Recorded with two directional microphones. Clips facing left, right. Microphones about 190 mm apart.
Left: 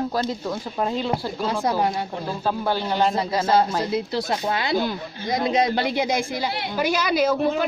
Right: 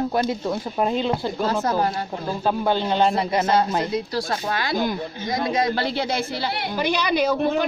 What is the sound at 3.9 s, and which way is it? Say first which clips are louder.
A woman's voice: left 1 dB; 25° left (ahead or behind).